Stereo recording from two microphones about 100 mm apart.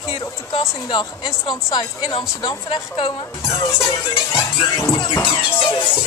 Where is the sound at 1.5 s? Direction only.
50° left (ahead or behind).